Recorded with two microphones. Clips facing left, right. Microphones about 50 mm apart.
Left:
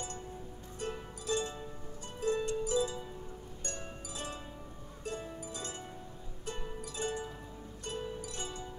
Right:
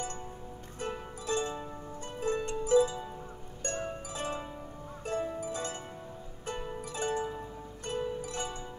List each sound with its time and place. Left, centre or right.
0.8 s music: right
2.1 s harp: right
5.4 s music: right
6.8 s music: right